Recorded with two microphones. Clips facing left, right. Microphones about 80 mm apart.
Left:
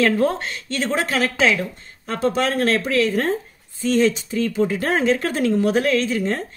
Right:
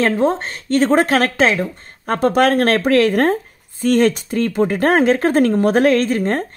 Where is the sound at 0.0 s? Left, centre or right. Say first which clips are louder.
Right 2 dB; right.